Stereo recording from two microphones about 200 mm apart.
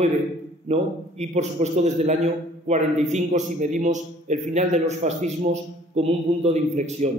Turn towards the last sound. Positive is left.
turn(degrees=-35)  # may be behind; listen again after turning